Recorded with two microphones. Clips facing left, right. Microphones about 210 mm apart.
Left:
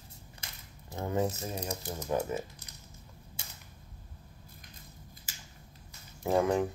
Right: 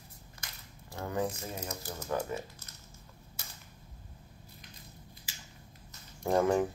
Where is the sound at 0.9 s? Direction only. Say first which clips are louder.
Left 3 dB; 20° left (ahead or behind).